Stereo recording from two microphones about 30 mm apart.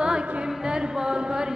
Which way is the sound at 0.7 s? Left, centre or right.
Right.